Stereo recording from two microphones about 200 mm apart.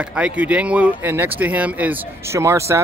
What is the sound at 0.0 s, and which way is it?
Speech, 5° right (ahead or behind).